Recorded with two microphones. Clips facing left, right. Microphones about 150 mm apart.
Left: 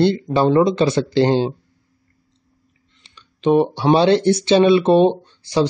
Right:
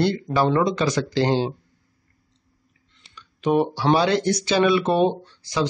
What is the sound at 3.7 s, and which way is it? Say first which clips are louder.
Speech: left 5 dB; 25° left (ahead or behind).